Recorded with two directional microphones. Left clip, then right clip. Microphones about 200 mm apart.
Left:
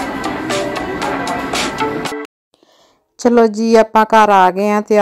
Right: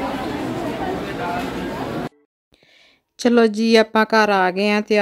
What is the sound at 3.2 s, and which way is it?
Speech, 15° right (ahead or behind).